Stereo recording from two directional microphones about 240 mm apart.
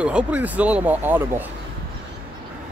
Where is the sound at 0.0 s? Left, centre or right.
Centre.